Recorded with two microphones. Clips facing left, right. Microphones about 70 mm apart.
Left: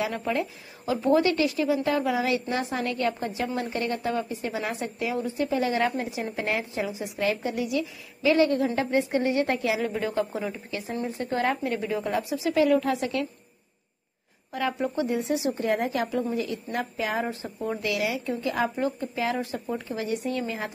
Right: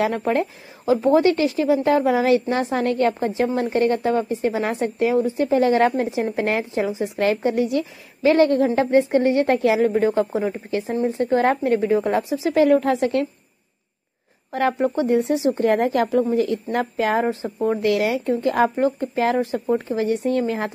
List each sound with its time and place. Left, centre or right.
0.0 s a woman's voice: right
6.0 s a woman's voice: right
14.5 s speech: right